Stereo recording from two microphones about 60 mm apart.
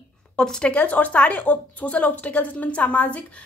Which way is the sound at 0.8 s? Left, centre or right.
Left.